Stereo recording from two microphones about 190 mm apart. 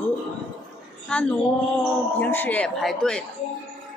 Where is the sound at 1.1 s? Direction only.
5° left (ahead or behind).